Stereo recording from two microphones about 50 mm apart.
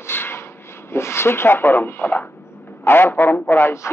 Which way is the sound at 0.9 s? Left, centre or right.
Left.